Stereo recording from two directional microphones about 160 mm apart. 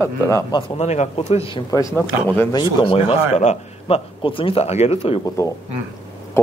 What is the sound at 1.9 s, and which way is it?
Speech, 10° left (ahead or behind).